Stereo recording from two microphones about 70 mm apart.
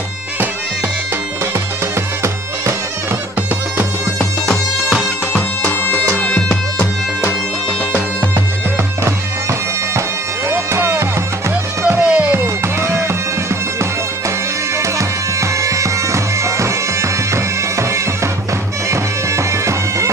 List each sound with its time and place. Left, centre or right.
4.8 s music: centre
5.7 s music: left
9.0 s bagpipes: right
10.5 s music: right
12.0 s music: centre
12.6 s bagpipes: right